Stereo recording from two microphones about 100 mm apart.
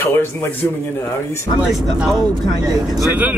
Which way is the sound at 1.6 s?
5° right (ahead or behind).